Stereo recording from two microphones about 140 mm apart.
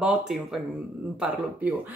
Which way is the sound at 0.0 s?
5° right (ahead or behind).